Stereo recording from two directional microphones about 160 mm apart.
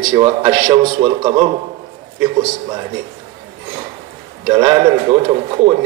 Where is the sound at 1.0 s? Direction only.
35° right (ahead or behind).